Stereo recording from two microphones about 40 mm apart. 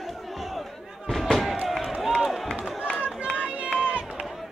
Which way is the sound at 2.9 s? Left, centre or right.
Right.